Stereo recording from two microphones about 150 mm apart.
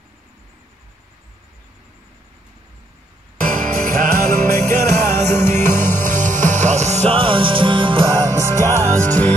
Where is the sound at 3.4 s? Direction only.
65° right (ahead or behind).